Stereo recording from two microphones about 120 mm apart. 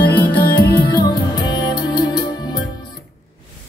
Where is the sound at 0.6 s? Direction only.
35° left (ahead or behind).